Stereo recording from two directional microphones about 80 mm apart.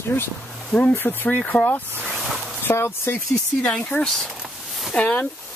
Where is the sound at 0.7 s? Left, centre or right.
Centre.